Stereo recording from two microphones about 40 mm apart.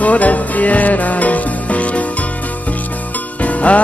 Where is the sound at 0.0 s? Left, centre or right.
Left.